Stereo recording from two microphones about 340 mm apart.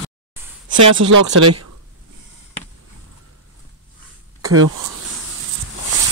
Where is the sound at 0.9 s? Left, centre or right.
Right.